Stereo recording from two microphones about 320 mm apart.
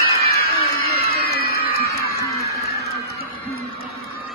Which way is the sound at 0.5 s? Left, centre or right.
Right.